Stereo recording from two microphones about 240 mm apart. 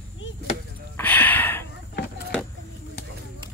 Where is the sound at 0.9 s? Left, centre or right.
Centre.